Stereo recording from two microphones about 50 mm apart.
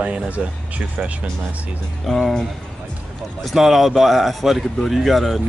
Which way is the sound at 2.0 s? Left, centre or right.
Centre.